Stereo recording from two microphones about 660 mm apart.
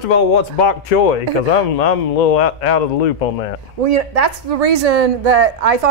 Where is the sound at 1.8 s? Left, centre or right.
Left.